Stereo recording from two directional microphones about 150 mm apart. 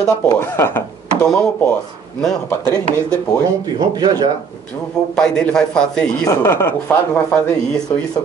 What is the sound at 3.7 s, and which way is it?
Speech, 25° right (ahead or behind).